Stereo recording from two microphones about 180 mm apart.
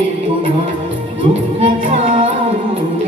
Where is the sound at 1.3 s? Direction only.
35° right (ahead or behind).